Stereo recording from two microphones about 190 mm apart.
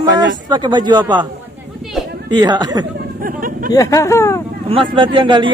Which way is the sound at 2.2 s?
25° right (ahead or behind).